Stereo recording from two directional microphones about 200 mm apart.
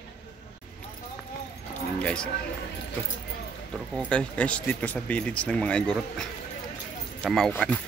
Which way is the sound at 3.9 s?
5° left (ahead or behind).